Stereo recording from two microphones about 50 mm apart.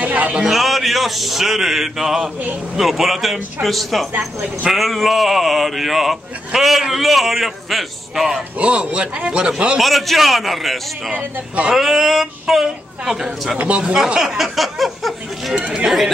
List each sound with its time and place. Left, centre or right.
0.0 s a sound: right
0.4 s speech: centre
8.5 s a man's voice: right
9.8 s speech: centre
11.1 s a man's voice: right
11.7 s speech: centre
13.7 s a man's voice: right; by 15.5 s centre
15.5 s a man's voice: right